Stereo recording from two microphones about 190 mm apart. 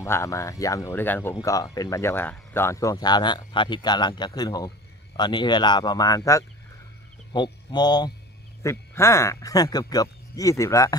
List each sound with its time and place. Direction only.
0.0 s speech: 15° left (ahead or behind)
7.3 s a sound: 25° left (ahead or behind)
8.6 s speech: 15° left (ahead or behind)